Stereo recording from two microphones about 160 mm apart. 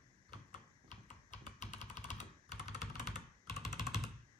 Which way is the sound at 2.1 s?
50° left (ahead or behind).